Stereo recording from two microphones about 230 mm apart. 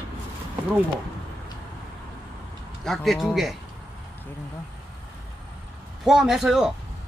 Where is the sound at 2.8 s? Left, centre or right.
Centre.